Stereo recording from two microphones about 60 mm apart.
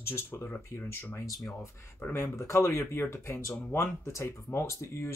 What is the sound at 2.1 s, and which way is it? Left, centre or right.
Speech, left.